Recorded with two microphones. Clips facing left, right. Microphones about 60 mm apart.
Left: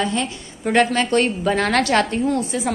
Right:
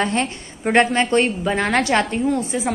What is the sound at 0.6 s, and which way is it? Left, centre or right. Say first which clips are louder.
A woman's voice: right 1 dB; right.